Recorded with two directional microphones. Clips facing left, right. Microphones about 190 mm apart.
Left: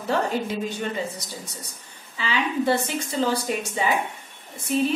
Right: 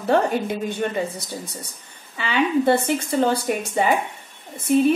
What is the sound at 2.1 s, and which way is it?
A woman's voice, 55° right (ahead or behind).